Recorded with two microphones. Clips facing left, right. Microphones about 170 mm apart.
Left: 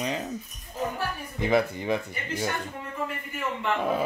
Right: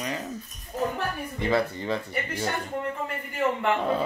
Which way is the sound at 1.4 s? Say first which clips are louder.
Left 1 dB; 15° left (ahead or behind).